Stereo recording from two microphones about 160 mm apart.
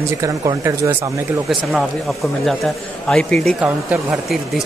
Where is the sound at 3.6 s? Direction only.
10° right (ahead or behind).